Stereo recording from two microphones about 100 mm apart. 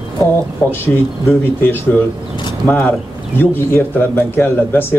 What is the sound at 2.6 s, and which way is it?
Speech, 25° left (ahead or behind).